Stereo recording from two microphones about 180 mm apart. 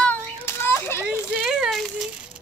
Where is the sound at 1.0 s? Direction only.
5° right (ahead or behind).